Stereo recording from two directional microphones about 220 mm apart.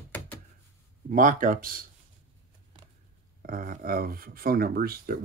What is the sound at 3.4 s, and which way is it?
Speech, 40° right (ahead or behind).